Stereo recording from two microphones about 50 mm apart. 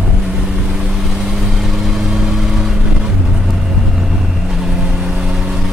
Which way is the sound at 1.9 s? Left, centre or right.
Centre.